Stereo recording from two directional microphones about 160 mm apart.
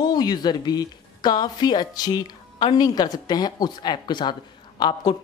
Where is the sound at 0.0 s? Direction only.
25° left (ahead or behind).